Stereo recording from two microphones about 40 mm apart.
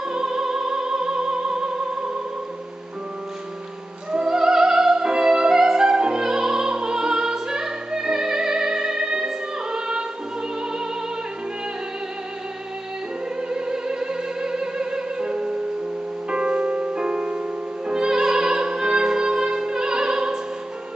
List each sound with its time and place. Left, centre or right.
0.1 s music: centre
4.1 s music: centre
13.5 s music: centre